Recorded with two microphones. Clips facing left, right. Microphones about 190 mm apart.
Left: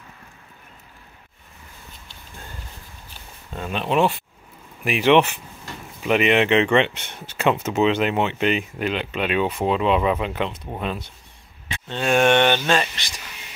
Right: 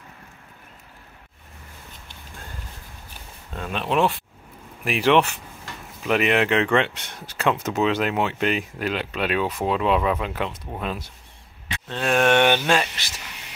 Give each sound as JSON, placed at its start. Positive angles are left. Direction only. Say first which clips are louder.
{"t": 3.5, "sound": "speech", "louder": "left 2 dB", "side_deg": 0}